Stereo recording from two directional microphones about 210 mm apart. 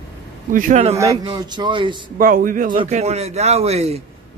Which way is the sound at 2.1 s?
40° right (ahead or behind).